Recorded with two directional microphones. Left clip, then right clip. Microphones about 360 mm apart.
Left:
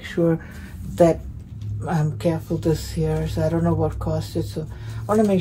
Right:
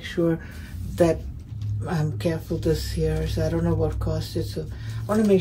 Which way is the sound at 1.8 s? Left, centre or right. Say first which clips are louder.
Left 4 dB; centre.